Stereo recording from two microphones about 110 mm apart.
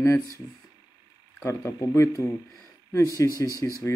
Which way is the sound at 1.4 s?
30° left (ahead or behind).